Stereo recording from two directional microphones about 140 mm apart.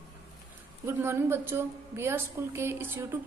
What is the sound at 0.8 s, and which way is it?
A woman's voice, 20° right (ahead or behind).